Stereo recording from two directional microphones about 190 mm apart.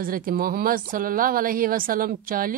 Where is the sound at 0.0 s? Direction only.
50° right (ahead or behind).